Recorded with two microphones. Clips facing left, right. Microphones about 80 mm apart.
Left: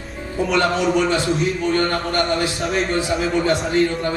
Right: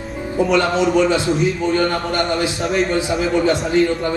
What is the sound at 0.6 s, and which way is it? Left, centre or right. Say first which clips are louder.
A man's voice: right 1 dB; centre.